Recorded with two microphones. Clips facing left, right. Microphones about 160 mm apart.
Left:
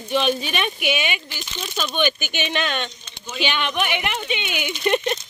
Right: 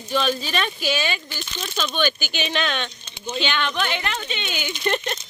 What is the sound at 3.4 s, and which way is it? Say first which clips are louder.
Speech: left 1 dB; 15° left (ahead or behind).